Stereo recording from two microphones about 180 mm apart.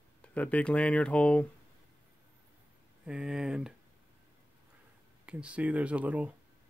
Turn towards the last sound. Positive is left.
turn(degrees=-10)  # may be behind; listen again after turning